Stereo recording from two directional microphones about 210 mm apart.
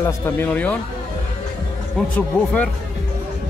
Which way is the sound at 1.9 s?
5° left (ahead or behind).